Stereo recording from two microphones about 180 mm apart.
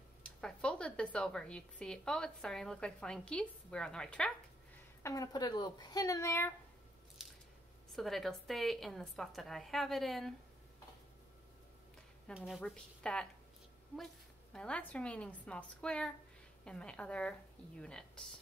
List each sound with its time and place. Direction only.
0.2 s a woman's voice: 5° left (ahead or behind)
5.0 s speech: 20° left (ahead or behind)
7.9 s a woman's voice: centre (ahead or behind)
12.4 s a woman's voice: centre (ahead or behind)
14.5 s a woman's voice: 5° left (ahead or behind)